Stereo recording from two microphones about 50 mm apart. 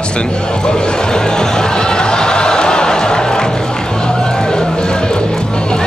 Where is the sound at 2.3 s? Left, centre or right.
Centre.